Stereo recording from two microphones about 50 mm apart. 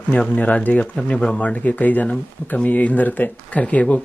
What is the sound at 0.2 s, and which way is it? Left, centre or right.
Speech, left.